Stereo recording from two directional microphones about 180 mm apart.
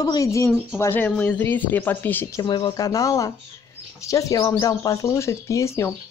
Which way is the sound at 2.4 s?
30° left (ahead or behind).